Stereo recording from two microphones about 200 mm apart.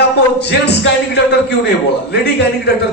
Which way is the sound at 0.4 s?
55° left (ahead or behind).